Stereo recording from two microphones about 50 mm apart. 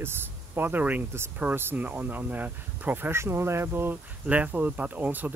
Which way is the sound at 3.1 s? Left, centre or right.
Right.